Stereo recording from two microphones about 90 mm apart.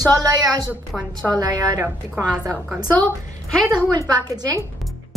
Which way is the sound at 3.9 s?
45° right (ahead or behind).